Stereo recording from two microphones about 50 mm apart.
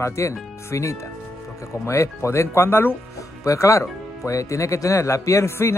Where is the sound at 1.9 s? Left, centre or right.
Left.